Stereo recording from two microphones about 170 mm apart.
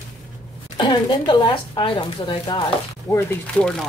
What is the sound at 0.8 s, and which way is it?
Speech, 25° left (ahead or behind).